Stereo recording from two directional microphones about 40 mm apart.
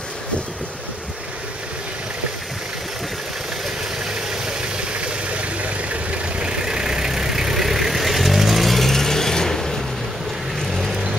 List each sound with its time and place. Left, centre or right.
4.1 s vehicle: right
6.4 s vehicle: centre